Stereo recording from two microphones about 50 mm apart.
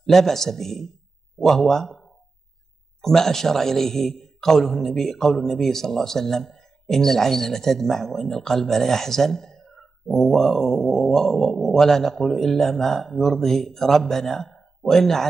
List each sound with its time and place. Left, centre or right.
0.0 s a man's voice: centre